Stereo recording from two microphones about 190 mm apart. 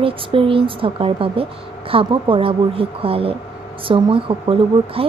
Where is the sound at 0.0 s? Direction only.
30° right (ahead or behind).